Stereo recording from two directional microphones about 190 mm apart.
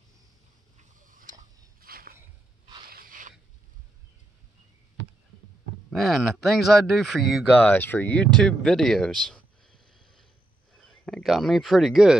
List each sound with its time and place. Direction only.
0.7 s tick-tock: 45° right (ahead or behind)
1.3 s biting: 50° right (ahead or behind)
2.9 s a sound: 50° right (ahead or behind)
5.9 s speech: centre (ahead or behind)